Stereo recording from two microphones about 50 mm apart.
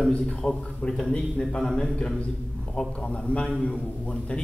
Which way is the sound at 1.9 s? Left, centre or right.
Left.